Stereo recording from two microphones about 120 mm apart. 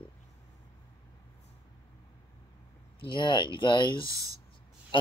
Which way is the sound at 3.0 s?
45° left (ahead or behind).